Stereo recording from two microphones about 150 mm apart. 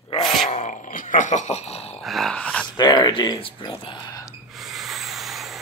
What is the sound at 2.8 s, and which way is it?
Speech, 30° left (ahead or behind).